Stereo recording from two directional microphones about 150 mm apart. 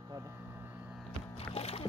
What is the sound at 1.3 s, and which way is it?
Speech, 40° left (ahead or behind).